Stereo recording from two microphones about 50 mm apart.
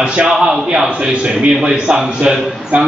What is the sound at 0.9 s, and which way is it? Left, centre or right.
A man's voice, right.